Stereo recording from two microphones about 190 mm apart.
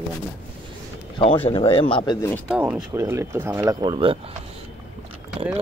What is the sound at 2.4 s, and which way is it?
Speech, 5° right (ahead or behind).